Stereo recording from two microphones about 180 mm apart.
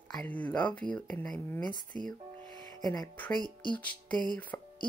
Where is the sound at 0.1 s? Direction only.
10° left (ahead or behind).